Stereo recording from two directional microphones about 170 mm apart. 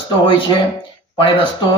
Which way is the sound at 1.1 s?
30° left (ahead or behind).